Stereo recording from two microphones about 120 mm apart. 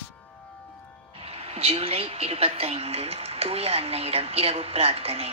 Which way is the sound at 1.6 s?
55° right (ahead or behind).